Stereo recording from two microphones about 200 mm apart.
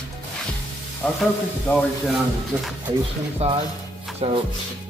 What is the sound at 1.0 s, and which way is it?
A man's voice, 5° left (ahead or behind).